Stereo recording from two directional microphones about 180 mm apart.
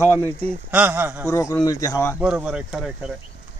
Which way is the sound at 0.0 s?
10° left (ahead or behind).